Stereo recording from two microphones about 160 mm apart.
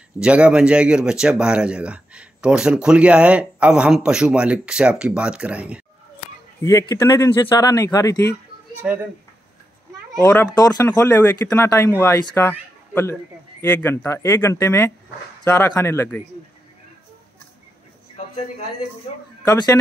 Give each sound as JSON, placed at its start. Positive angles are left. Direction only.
{"t": 0.2, "sound": "speech", "side_deg": -5}
{"t": 6.6, "sound": "speech", "side_deg": 20}
{"t": 10.2, "sound": "speech", "side_deg": 15}
{"t": 19.4, "sound": "speech", "side_deg": 25}